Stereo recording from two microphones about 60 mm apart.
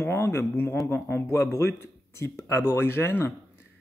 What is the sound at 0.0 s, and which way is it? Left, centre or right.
Speech, left.